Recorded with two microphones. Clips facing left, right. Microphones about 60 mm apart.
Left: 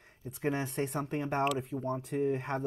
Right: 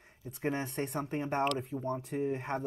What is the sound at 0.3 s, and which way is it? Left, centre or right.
Speech, centre.